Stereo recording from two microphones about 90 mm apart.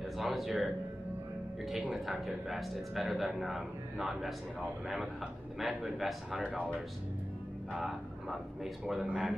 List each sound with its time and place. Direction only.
0.0 s speech: centre (ahead or behind)
1.7 s speech: centre (ahead or behind)
6.4 s speech: 15° right (ahead or behind)
7.7 s speech: 5° right (ahead or behind)